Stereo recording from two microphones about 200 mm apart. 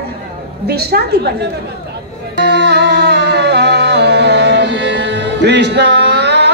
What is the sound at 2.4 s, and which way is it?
Music, 55° right (ahead or behind).